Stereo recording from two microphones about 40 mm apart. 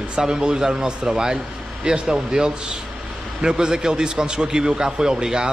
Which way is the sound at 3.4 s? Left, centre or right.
Centre.